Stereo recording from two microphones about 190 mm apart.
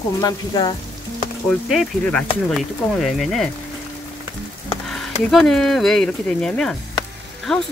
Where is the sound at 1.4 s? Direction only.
5° left (ahead or behind).